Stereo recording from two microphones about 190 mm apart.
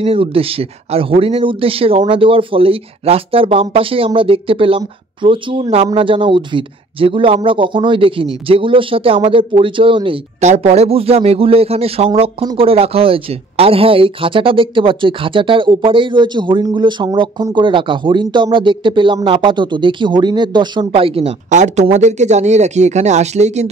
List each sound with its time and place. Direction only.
0.0 s speech: 30° right (ahead or behind)